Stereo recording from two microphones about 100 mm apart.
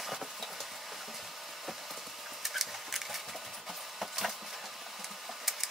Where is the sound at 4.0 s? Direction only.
Centre (ahead or behind).